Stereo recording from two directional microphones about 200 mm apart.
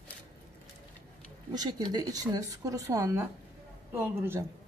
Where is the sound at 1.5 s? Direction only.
20° right (ahead or behind).